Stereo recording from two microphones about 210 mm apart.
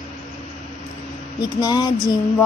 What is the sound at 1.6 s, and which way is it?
Speech, 20° left (ahead or behind).